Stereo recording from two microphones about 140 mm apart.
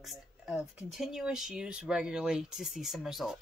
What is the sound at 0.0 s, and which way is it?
Speech, centre (ahead or behind).